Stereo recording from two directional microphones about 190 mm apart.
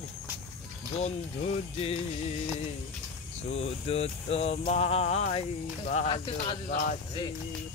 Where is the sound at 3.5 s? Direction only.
30° left (ahead or behind).